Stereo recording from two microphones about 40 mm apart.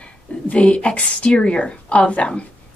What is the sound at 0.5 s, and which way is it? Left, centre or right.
A woman's voice, left.